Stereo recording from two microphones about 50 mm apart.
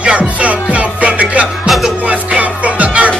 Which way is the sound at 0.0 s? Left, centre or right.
Right.